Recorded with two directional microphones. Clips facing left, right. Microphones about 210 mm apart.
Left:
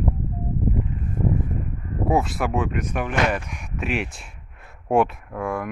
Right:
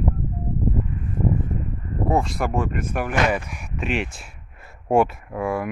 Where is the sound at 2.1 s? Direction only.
5° left (ahead or behind).